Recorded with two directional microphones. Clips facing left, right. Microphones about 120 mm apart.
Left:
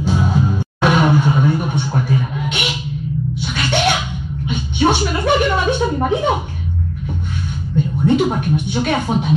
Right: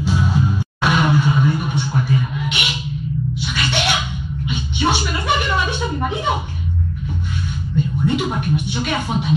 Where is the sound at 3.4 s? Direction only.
45° left (ahead or behind).